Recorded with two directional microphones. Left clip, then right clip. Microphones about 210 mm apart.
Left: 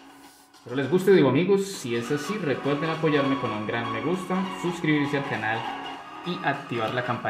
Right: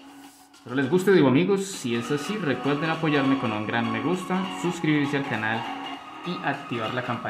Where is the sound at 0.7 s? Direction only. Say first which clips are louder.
Even; 15° right (ahead or behind).